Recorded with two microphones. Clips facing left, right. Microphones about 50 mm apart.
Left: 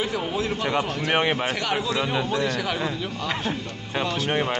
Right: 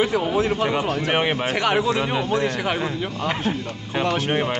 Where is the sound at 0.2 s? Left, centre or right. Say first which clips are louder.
Right 5 dB; right.